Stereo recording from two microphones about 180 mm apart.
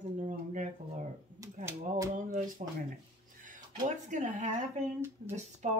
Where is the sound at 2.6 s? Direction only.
40° right (ahead or behind).